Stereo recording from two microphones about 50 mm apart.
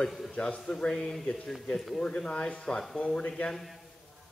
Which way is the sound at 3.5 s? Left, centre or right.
Centre.